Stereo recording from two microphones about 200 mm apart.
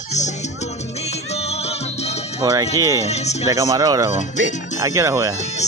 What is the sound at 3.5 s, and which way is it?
Speech, 15° right (ahead or behind).